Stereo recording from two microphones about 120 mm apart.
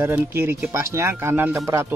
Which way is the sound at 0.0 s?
20° right (ahead or behind).